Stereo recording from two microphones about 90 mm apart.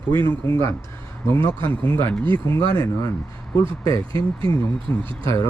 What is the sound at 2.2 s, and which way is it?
Speech, 70° right (ahead or behind).